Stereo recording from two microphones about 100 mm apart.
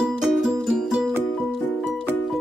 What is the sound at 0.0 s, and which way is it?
Music, 5° right (ahead or behind).